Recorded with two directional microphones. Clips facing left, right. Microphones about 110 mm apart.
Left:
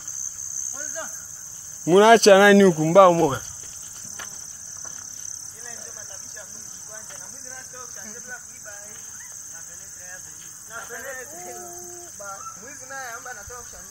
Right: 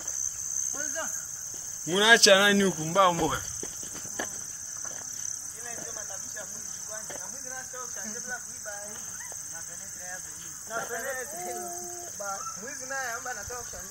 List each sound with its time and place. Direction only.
0.7 s cricket: 5° left (ahead or behind)
1.9 s speech: 50° left (ahead or behind)
2.5 s speech: 75° left (ahead or behind); by 3.3 s 55° left (ahead or behind)
8.0 s cricket: centre (ahead or behind)
11.1 s a sound: 5° right (ahead or behind)
12.2 s cricket: centre (ahead or behind)